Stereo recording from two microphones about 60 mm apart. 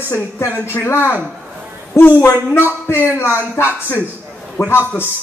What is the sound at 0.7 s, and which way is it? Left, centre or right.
A man's voice, left.